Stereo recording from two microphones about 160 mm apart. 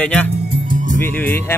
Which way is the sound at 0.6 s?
55° right (ahead or behind).